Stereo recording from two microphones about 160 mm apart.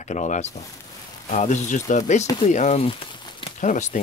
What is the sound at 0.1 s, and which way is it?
Speech, 45° left (ahead or behind).